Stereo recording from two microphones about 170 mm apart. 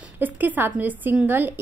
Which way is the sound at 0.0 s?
10° right (ahead or behind).